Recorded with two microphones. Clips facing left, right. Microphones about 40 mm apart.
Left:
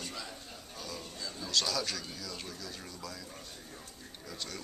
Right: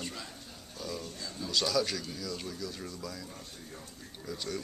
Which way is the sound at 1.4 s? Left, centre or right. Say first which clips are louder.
Right 3 dB; centre.